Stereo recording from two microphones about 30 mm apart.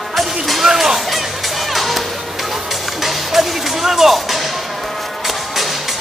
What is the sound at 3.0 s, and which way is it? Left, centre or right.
Music, centre.